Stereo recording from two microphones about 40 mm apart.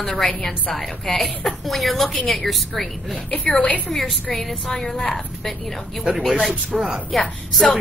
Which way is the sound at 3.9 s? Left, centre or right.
Centre.